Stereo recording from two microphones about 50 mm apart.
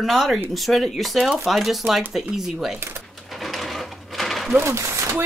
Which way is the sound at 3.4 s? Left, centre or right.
Centre.